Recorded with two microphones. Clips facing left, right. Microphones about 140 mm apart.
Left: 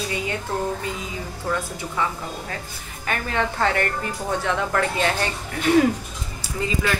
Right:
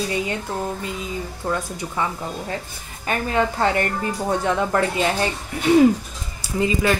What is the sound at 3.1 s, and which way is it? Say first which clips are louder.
Speech: right 3 dB; 25° right (ahead or behind).